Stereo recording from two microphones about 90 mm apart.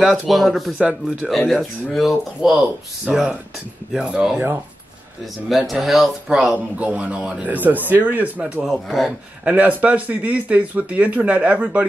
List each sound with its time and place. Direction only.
0.2 s speech: centre (ahead or behind)
5.5 s speech: centre (ahead or behind); by 8.6 s 20° right (ahead or behind)
8.7 s speech: centre (ahead or behind)
9.4 s speech: 15° right (ahead or behind)